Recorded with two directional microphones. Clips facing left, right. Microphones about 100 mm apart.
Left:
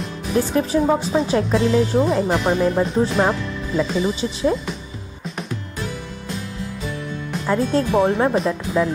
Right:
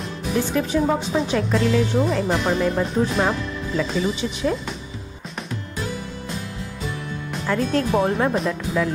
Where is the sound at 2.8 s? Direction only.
Centre (ahead or behind).